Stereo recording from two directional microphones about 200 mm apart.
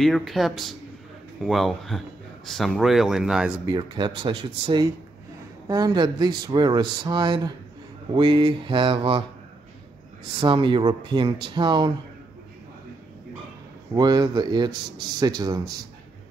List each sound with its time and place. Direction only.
0.0 s speech: centre (ahead or behind)
3.7 s speech: 25° right (ahead or behind)
10.4 s speech: 25° right (ahead or behind)
13.9 s speech: 20° right (ahead or behind)